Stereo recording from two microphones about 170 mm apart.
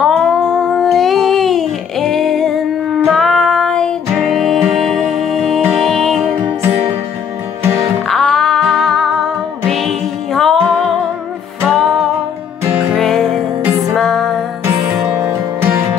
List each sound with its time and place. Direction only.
0.0 s a sound: 5° left (ahead or behind)
3.1 s music: centre (ahead or behind)
7.6 s music: 15° right (ahead or behind)
8.1 s music: centre (ahead or behind)
14.6 s music: 10° right (ahead or behind)